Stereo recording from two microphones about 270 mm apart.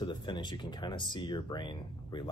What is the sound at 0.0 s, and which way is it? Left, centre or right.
Speech, centre.